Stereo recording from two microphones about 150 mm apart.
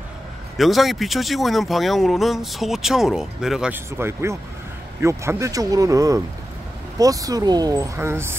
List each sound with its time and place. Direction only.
0.6 s speech: centre (ahead or behind); by 8.4 s 15° right (ahead or behind)